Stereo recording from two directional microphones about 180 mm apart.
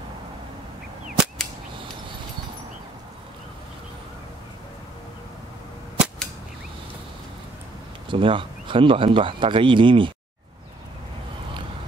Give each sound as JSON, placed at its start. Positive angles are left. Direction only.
{"t": 1.1, "sound": "whip", "side_deg": -5}
{"t": 8.1, "sound": "speech", "side_deg": -30}